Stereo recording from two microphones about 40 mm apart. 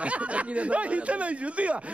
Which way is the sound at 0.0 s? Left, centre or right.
Right.